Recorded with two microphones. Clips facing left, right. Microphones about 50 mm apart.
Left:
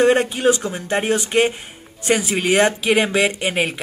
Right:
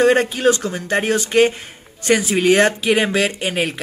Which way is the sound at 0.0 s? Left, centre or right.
Centre.